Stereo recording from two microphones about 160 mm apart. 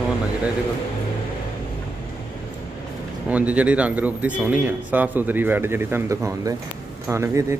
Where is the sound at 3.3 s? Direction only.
10° right (ahead or behind).